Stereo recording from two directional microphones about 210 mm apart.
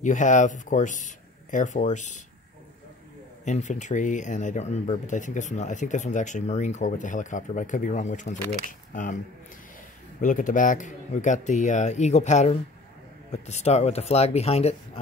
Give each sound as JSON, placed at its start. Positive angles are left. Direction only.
{"t": 0.0, "sound": "speech", "side_deg": 35}
{"t": 3.4, "sound": "speech", "side_deg": 35}
{"t": 10.2, "sound": "speech", "side_deg": 40}